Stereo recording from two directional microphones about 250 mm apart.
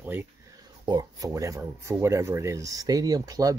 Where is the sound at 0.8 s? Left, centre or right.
Centre.